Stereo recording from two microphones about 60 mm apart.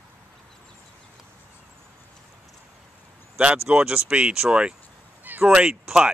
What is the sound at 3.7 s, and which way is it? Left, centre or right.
Speech, centre.